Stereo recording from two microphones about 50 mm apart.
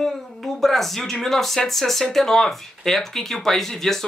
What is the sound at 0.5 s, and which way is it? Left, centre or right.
Speech, centre.